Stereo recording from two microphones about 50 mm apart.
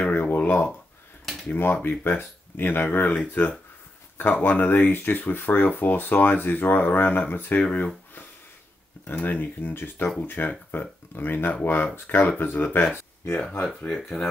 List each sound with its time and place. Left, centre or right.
0.0 s a sound: left
1.5 s speech: left
13.8 s speech: centre